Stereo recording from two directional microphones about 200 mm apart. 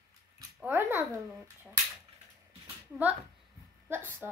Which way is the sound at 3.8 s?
10° right (ahead or behind).